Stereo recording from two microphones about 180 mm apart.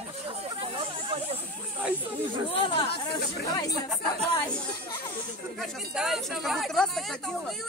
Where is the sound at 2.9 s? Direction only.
65° left (ahead or behind).